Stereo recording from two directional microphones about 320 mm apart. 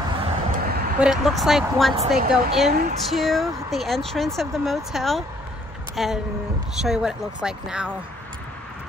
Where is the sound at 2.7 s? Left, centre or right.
Right.